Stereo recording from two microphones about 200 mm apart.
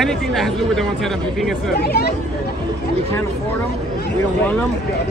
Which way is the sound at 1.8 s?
50° left (ahead or behind).